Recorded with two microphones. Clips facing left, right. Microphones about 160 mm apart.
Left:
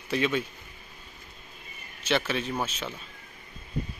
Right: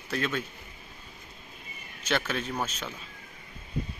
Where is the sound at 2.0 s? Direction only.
5° left (ahead or behind).